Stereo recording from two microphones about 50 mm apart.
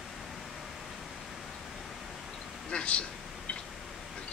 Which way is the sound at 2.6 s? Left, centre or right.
Left.